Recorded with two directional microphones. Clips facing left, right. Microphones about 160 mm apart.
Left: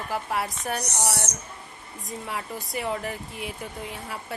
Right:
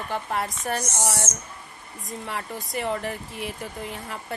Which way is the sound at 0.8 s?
65° left (ahead or behind).